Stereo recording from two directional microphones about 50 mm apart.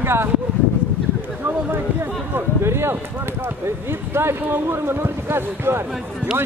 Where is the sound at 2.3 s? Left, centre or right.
Right.